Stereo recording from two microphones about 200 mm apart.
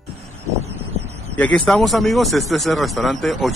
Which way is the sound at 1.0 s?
30° right (ahead or behind).